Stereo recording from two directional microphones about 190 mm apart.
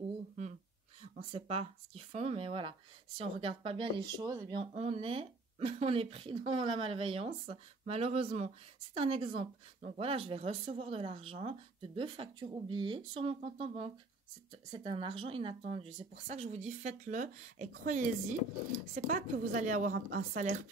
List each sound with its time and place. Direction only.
1.3 s speech: 30° right (ahead or behind)
19.0 s speech: 40° right (ahead or behind)